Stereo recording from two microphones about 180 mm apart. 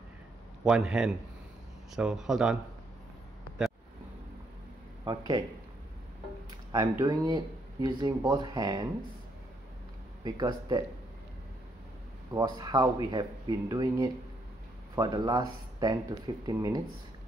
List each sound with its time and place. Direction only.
0.7 s speech: 5° right (ahead or behind)
5.0 s speech: 25° right (ahead or behind)
6.7 s speech: 20° right (ahead or behind)
10.2 s speech: 25° right (ahead or behind)
12.4 s speech: 25° right (ahead or behind)